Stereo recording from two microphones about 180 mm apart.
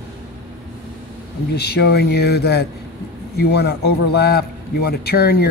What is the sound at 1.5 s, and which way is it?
A man's voice, 65° left (ahead or behind).